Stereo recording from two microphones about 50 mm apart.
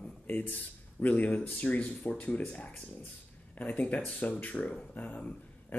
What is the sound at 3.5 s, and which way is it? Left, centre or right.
Speech, left.